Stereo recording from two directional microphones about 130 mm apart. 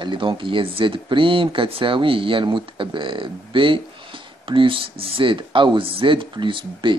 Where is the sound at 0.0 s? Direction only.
40° right (ahead or behind).